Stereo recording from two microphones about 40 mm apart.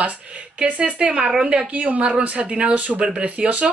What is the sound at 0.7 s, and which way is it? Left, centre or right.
A woman's voice, right.